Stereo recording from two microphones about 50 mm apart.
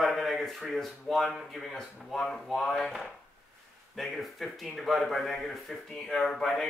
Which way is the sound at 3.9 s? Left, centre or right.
Centre.